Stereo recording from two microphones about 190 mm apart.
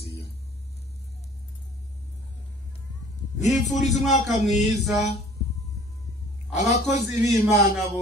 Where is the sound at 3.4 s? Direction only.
40° left (ahead or behind).